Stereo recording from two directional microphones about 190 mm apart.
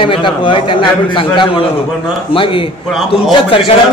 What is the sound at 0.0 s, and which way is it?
A man's voice, 25° left (ahead or behind).